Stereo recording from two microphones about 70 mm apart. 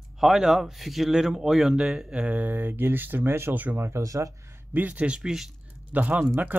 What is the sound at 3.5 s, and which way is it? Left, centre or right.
Speech, right.